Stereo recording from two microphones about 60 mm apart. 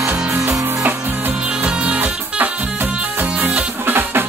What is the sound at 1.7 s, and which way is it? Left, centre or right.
Music, centre.